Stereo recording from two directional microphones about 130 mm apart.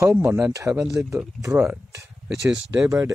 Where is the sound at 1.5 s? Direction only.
10° right (ahead or behind).